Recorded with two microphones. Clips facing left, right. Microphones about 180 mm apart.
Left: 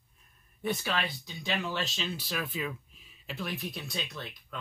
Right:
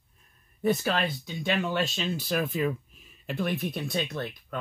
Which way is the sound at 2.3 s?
45° right (ahead or behind).